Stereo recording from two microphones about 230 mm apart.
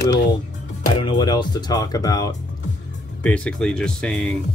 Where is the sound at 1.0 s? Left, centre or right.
Centre.